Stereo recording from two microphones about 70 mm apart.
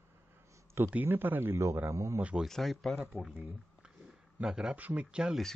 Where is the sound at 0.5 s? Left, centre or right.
Right.